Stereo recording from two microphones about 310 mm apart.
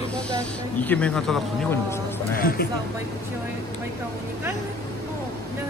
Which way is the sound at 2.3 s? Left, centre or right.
Left.